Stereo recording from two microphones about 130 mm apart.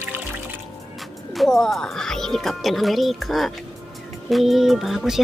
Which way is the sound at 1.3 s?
Centre (ahead or behind).